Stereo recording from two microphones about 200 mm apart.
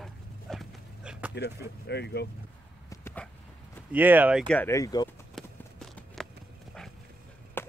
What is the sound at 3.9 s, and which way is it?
Speech, 10° right (ahead or behind).